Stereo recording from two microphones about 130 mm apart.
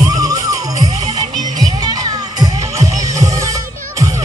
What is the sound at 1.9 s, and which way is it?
Music, 30° right (ahead or behind).